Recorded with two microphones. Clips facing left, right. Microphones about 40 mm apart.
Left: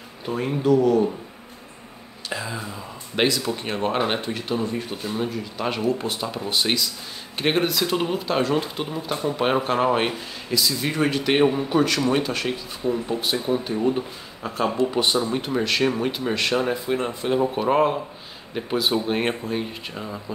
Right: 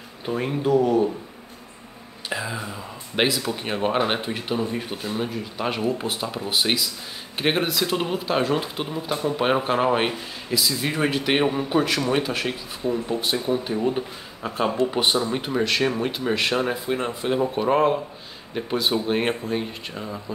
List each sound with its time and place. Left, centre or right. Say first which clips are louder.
0.3 s speech: left 1 dB; centre
2.2 s speech: right 1 dB; centre
15.3 s speech: even; centre